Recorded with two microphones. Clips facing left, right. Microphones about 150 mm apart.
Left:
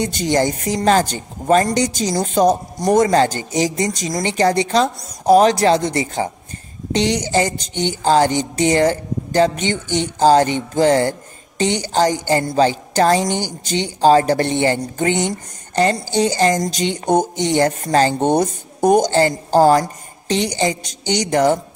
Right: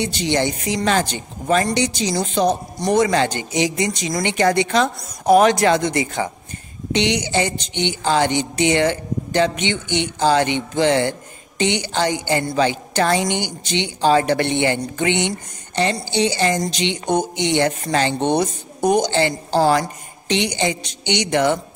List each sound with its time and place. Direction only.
0.0 s speech: 45° left (ahead or behind)